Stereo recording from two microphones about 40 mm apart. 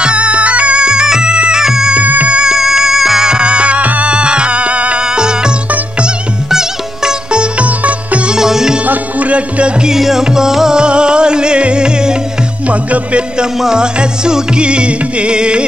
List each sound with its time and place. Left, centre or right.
0.0 s music: right
2.0 s music: right
2.3 s music: centre
3.3 s music: right
4.1 s music: right
5.0 s music: centre
7.5 s sitar: right
8.3 s music: centre
8.8 s music: right
9.8 s music: centre
10.8 s music: right
12.6 s music: right
13.7 s music: right